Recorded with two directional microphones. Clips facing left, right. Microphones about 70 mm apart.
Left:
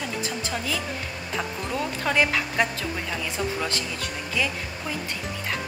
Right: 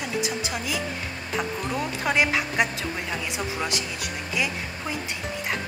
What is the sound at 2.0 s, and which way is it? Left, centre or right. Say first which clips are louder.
Speech: even; centre.